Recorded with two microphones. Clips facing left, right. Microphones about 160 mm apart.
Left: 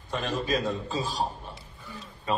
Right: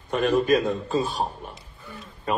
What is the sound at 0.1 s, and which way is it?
A woman's voice, 55° right (ahead or behind).